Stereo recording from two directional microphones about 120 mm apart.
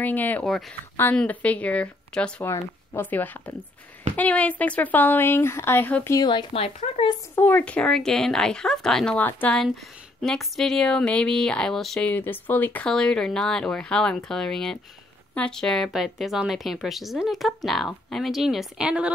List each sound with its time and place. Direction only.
0.0 s speech: 15° left (ahead or behind)
0.5 s speech: centre (ahead or behind)
2.4 s speech: 20° left (ahead or behind)
6.1 s speech: 40° left (ahead or behind)
6.8 s speech: 65° left (ahead or behind)
7.3 s speech: 15° left (ahead or behind)
10.2 s speech: centre (ahead or behind)
12.1 s speech: 15° left (ahead or behind); by 19.1 s 10° right (ahead or behind)